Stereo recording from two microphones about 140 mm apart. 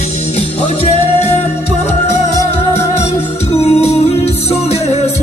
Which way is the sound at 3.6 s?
50° left (ahead or behind).